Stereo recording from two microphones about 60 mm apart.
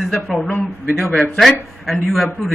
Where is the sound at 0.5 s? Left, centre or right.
Left.